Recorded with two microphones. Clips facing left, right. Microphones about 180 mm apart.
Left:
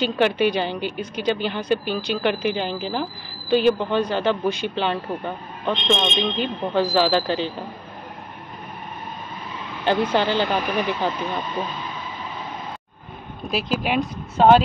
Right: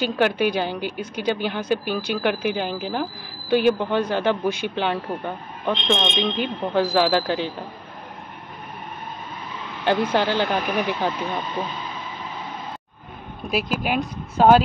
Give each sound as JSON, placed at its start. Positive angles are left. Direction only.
{"t": 0.0, "sound": "a woman's voice", "side_deg": -10}
{"t": 5.7, "sound": "speech", "side_deg": 0}
{"t": 6.3, "sound": "a woman's voice", "side_deg": -10}
{"t": 10.0, "sound": "a woman's voice", "side_deg": -10}
{"t": 10.4, "sound": "speech", "side_deg": 0}
{"t": 13.5, "sound": "speech", "side_deg": -55}
{"t": 13.8, "sound": "speech", "side_deg": 0}